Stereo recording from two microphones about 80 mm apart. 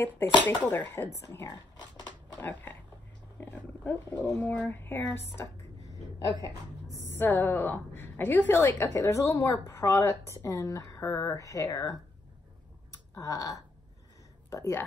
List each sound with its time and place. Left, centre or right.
0.5 s speech: left
1.5 s speech: left
2.4 s speech: left
6.4 s a sound: left
7.2 s a woman's voice: left
12.9 s clicking: left
14.5 s speech: left